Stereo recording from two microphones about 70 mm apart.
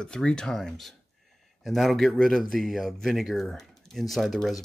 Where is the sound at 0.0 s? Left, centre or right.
Centre.